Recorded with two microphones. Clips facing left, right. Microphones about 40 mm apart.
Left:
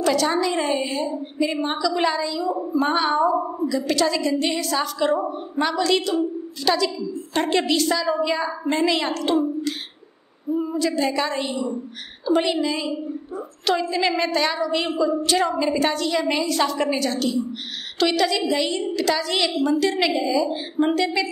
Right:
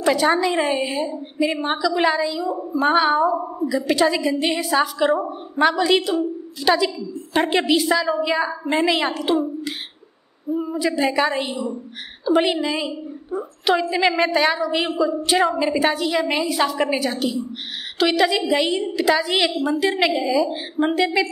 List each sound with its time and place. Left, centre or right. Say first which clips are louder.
0.0 s a woman's voice: right 2 dB; centre
10.5 s a woman's voice: even; centre
10.9 s a woman's voice: right 7 dB; right; by 15.1 s centre
15.2 s a woman's voice: right 2 dB; centre